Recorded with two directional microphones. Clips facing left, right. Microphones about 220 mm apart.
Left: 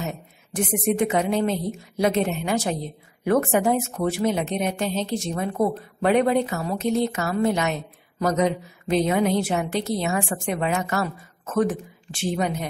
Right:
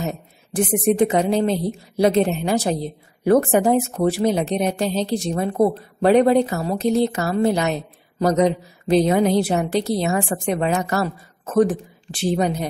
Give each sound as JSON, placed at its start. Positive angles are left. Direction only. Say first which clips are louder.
{"t": 0.0, "sound": "a woman's voice", "louder": "right 4 dB", "side_deg": -35}